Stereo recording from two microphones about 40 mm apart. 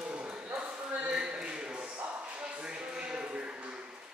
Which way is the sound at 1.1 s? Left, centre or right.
Right.